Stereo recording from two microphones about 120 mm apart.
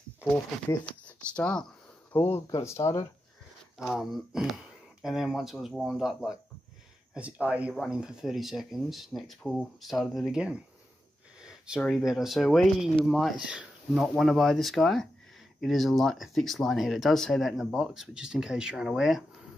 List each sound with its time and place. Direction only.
1.0 s speech: 10° left (ahead or behind); by 3.1 s 30° left (ahead or behind)
3.7 s speech: centre (ahead or behind)
7.2 s speech: 10° right (ahead or behind)
11.4 s a sound: 5° right (ahead or behind)
11.8 s speech: centre (ahead or behind)